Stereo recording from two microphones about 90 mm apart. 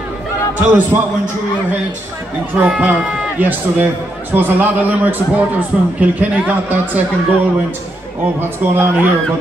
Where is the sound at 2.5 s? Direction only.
15° right (ahead or behind).